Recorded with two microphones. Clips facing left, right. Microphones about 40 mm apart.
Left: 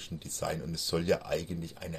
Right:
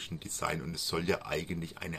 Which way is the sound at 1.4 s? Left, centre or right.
Right.